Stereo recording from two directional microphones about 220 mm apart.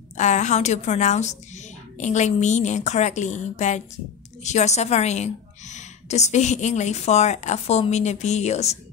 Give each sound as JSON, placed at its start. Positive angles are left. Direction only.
{"t": 0.2, "sound": "a woman's voice", "side_deg": 30}